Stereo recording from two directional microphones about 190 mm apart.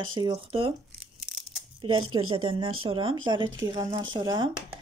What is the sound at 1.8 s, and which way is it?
Speech, 25° right (ahead or behind).